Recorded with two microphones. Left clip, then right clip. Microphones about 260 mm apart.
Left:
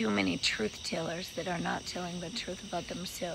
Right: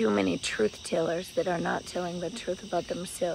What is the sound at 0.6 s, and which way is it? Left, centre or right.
Speech, right.